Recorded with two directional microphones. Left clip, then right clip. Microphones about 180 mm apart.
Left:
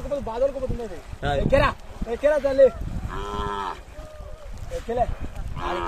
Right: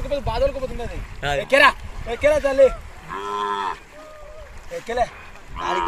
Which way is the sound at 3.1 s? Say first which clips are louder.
Right 5 dB; 30° left (ahead or behind).